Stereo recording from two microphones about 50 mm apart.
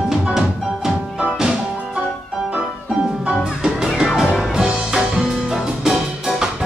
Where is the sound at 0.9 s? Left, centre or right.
Centre.